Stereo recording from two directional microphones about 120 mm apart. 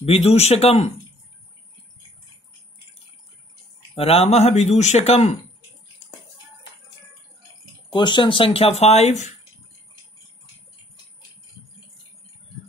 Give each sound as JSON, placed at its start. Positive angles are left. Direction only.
{"t": 0.0, "sound": "speech", "side_deg": 55}
{"t": 3.9, "sound": "speech", "side_deg": 55}
{"t": 7.9, "sound": "speech", "side_deg": 40}